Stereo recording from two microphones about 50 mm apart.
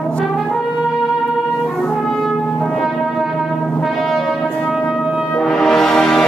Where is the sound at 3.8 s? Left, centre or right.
Centre.